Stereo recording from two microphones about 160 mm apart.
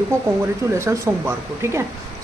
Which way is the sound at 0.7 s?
15° right (ahead or behind).